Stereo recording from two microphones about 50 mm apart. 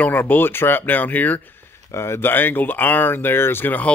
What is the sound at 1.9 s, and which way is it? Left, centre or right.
Speech, left.